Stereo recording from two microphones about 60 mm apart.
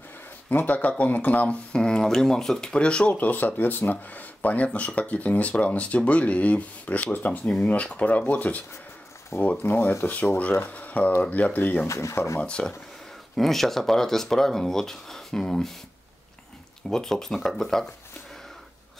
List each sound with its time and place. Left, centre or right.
0.5 s speech: left
1.7 s speech: centre
3.1 s speech: left
11.9 s speech: left
12.4 s speech: centre
13.4 s speech: centre
16.9 s speech: centre